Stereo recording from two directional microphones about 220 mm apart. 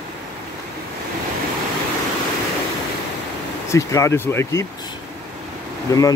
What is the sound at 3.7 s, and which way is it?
Speech, 15° left (ahead or behind).